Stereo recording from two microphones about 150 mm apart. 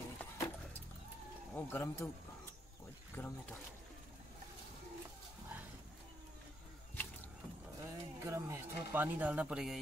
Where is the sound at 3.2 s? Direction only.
15° left (ahead or behind).